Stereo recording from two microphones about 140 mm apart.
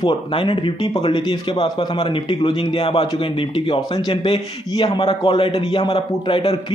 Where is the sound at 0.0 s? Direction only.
40° left (ahead or behind).